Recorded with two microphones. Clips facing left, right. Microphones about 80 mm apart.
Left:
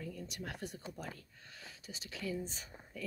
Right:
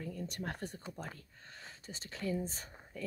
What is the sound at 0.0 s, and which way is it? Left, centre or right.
Speech, right.